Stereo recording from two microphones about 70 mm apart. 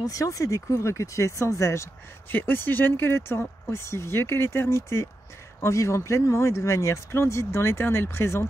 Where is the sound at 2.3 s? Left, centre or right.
Left.